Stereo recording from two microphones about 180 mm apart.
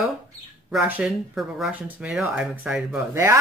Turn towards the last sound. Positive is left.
turn(degrees=-5)  # may be behind; listen again after turning